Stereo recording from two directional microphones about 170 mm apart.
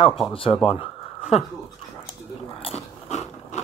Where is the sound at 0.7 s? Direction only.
35° left (ahead or behind).